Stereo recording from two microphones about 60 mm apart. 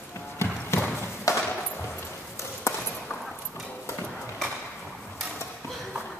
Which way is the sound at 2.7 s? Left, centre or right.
Left.